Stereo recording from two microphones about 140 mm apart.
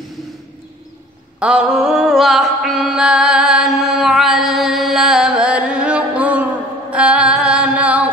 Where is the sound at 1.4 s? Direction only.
5° right (ahead or behind).